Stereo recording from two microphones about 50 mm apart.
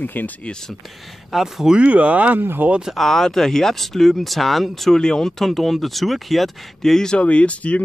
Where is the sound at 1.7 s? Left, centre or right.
Right.